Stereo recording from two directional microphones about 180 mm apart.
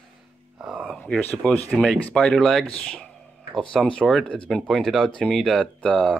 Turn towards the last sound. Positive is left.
turn(degrees=5)  # may be behind; listen again after turning